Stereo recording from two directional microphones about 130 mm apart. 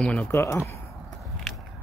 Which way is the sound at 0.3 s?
20° left (ahead or behind).